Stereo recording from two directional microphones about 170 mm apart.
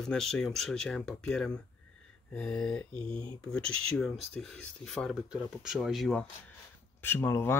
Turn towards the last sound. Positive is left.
turn(degrees=15)  # may be behind; listen again after turning